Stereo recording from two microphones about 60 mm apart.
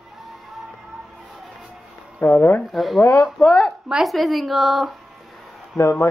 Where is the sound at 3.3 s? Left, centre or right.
Centre.